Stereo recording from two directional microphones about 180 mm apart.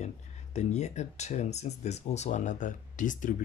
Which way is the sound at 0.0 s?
40° left (ahead or behind).